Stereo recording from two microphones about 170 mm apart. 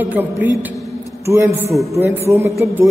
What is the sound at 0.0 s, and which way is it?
A man's voice, 10° right (ahead or behind).